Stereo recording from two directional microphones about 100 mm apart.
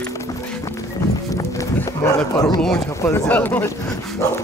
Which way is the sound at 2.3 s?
40° left (ahead or behind).